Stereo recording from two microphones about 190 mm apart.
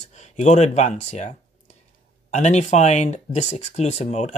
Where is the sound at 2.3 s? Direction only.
40° left (ahead or behind).